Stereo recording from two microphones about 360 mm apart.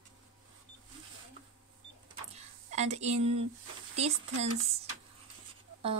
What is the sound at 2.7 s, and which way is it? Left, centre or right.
Speech, centre.